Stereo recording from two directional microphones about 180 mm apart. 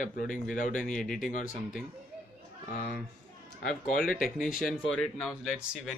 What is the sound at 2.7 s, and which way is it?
Speech, 55° left (ahead or behind).